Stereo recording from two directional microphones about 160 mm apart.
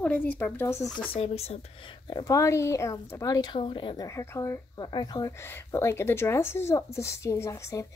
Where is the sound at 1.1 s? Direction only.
40° left (ahead or behind).